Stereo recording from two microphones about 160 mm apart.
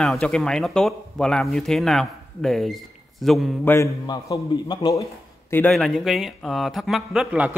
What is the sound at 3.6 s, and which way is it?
Mantra, 15° left (ahead or behind).